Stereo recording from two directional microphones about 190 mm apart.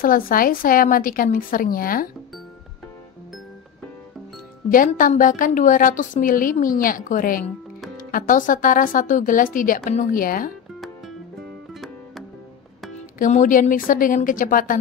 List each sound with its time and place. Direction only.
0.0 s a woman's voice: 50° left (ahead or behind)
4.6 s a woman's voice: 45° left (ahead or behind)
11.7 s music: centre (ahead or behind)
13.2 s a woman's voice: 45° left (ahead or behind)